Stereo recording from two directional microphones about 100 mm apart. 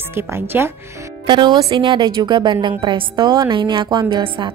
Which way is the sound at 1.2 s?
50° right (ahead or behind).